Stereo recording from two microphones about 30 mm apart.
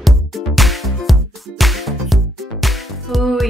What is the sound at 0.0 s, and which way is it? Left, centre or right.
Music, centre.